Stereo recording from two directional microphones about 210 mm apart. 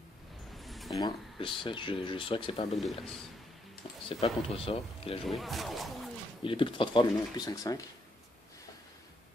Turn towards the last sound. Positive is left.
turn(degrees=15)  # may be behind; listen again after turning